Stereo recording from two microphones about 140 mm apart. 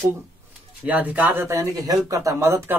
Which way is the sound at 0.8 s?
10° right (ahead or behind).